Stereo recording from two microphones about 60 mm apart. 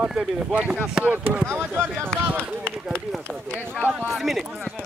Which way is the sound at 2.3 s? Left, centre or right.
Right.